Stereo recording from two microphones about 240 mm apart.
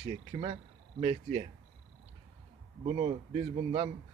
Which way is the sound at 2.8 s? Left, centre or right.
Right.